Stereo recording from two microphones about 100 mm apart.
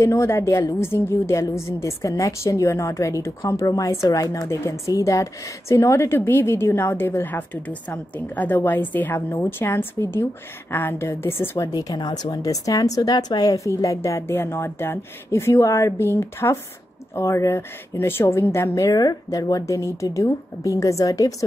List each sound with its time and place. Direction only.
0.0 s a woman's voice: 30° left (ahead or behind)
11.7 s speech: 45° left (ahead or behind)